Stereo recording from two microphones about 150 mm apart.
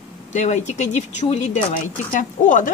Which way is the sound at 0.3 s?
50° left (ahead or behind).